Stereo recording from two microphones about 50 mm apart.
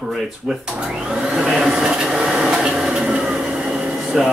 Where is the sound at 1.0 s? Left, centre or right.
Centre.